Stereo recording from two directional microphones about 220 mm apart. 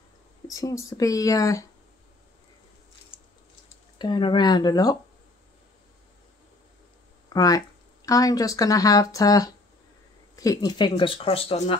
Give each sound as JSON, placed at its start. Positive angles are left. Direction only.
{"t": 0.5, "sound": "speech", "side_deg": 15}
{"t": 4.0, "sound": "speech", "side_deg": 20}
{"t": 7.3, "sound": "speech", "side_deg": 15}